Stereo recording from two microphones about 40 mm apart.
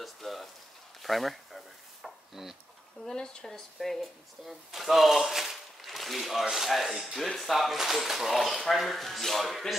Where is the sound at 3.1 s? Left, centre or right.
Centre.